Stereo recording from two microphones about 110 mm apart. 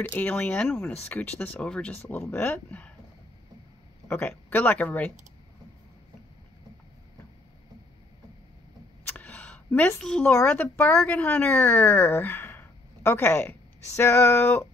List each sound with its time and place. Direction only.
0.1 s speech: 15° left (ahead or behind)
4.5 s speech: 15° left (ahead or behind)
9.0 s a sound: 15° left (ahead or behind)
10.0 s speech: 10° left (ahead or behind)
10.3 s speech: 20° left (ahead or behind)